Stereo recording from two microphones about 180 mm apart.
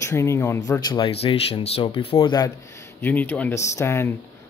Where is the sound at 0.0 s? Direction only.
15° left (ahead or behind); by 1.9 s 35° left (ahead or behind).